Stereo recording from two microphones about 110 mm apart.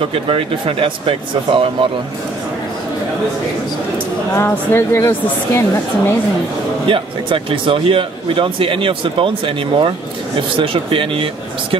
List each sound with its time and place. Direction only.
0.1 s speech: 55° right (ahead or behind)
4.4 s speech: 25° left (ahead or behind)
6.9 s a man's voice: 50° right (ahead or behind)